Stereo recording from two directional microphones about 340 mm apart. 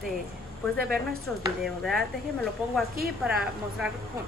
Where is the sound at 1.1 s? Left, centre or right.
Centre.